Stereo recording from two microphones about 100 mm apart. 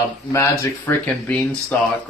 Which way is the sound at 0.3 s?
30° left (ahead or behind).